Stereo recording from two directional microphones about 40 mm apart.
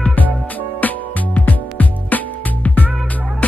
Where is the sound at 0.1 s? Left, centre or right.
Left.